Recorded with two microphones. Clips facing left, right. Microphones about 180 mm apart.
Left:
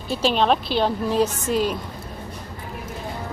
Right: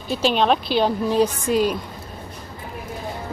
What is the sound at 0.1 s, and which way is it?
A woman's voice, centre (ahead or behind).